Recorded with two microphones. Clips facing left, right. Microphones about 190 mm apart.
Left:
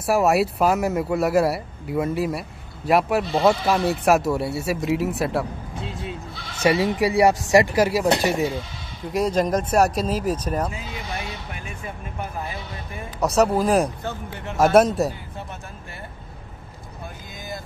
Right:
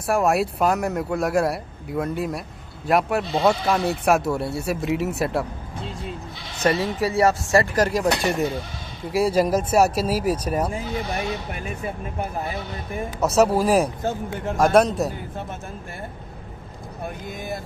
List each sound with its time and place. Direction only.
0.0 s speech: centre (ahead or behind)
6.6 s speech: 15° left (ahead or behind); by 10.7 s 10° right (ahead or behind)
13.2 s speech: centre (ahead or behind)
14.0 s speech: 45° right (ahead or behind)
14.6 s speech: centre (ahead or behind)